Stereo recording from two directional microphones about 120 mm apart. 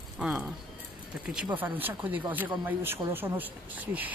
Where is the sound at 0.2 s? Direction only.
10° right (ahead or behind).